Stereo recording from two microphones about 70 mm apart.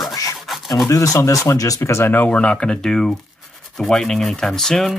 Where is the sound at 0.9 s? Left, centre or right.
Left.